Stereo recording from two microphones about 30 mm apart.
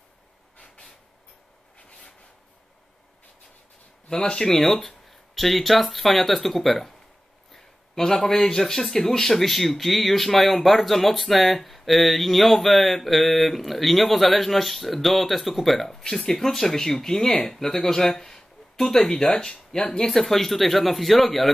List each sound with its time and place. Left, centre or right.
4.1 s speech: left
4.5 s speech: centre
7.5 s a sound: centre
8.2 s speech: centre
15.9 s speech: centre
19.5 s speech: left
20.2 s speech: centre